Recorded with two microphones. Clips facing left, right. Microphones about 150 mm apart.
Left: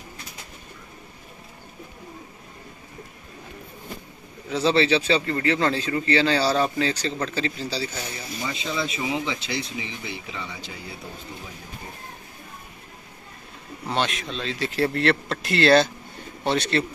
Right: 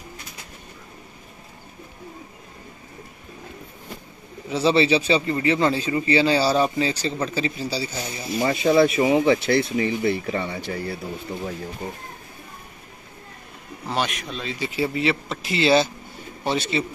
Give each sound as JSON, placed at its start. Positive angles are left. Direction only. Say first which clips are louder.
{"t": 4.5, "sound": "speech", "louder": "right 2 dB", "side_deg": -5}
{"t": 8.4, "sound": "speech", "louder": "right 12 dB", "side_deg": -55}
{"t": 11.8, "sound": "speech", "louder": "right 8 dB", "side_deg": -75}
{"t": 13.8, "sound": "speech", "louder": "even", "side_deg": 0}